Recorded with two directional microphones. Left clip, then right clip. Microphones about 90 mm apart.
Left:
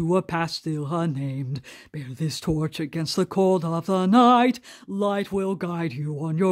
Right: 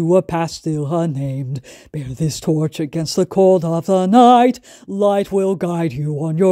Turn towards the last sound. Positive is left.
turn(degrees=-30)  # may be behind; listen again after turning